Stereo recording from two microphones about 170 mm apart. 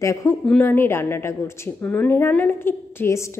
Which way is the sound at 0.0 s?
15° left (ahead or behind).